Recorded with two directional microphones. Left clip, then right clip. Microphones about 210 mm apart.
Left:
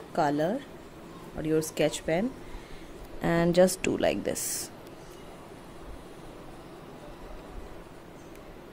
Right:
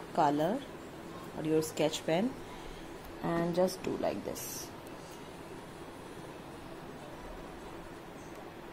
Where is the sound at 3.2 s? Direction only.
35° left (ahead or behind).